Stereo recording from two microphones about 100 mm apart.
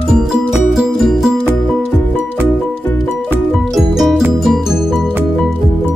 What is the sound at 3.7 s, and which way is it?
Music, centre (ahead or behind).